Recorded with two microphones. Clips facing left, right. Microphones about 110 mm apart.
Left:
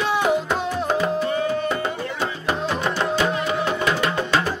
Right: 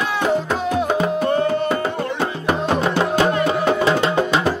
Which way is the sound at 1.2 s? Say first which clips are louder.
Right 4 dB; 55° right (ahead or behind).